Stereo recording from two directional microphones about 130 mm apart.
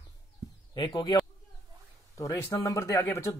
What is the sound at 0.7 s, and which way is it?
Speech, 35° left (ahead or behind).